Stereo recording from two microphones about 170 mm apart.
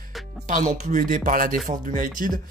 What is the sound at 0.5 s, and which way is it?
Speech, 50° right (ahead or behind).